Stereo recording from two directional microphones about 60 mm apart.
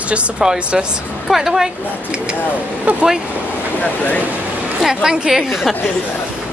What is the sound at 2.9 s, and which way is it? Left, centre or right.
Speech, right.